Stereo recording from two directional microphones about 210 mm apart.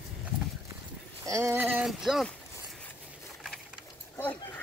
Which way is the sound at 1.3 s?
15° right (ahead or behind).